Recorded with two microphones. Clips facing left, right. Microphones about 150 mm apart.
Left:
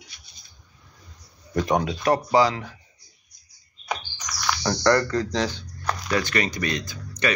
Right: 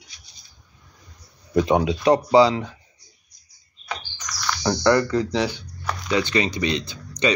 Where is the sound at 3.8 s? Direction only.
10° left (ahead or behind).